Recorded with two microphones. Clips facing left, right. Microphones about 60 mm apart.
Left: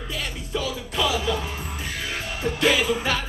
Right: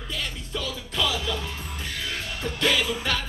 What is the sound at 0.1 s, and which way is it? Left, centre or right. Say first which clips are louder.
Music: left 3 dB; centre.